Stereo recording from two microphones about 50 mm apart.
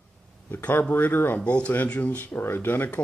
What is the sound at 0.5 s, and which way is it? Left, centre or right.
Speech, left.